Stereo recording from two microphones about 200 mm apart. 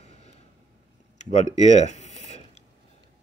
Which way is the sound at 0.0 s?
30° left (ahead or behind).